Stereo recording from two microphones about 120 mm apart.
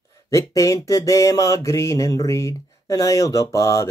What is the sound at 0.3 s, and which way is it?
Mantra, 25° left (ahead or behind).